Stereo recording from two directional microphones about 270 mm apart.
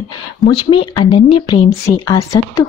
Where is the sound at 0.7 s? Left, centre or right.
Centre.